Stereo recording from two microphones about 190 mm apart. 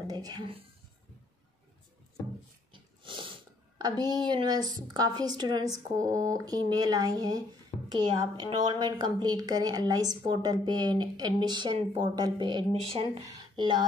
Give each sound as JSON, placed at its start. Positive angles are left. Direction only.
{"t": 0.0, "sound": "a woman's voice", "side_deg": -20}
{"t": 2.7, "sound": "speech", "side_deg": -25}
{"t": 8.5, "sound": "a woman's voice", "side_deg": -20}